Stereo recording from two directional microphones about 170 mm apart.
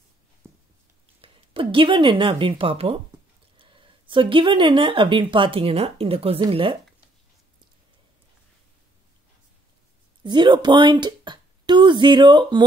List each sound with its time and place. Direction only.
0.4 s a sound: 15° right (ahead or behind)
1.2 s speech: 30° right (ahead or behind)
10.2 s speech: 25° right (ahead or behind)